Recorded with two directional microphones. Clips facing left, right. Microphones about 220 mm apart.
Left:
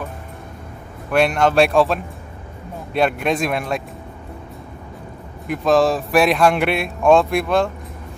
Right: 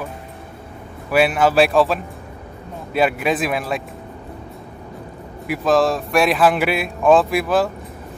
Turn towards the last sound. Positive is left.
turn(degrees=-5)  # may be behind; listen again after turning